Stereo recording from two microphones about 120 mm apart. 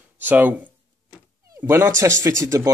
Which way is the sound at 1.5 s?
25° right (ahead or behind).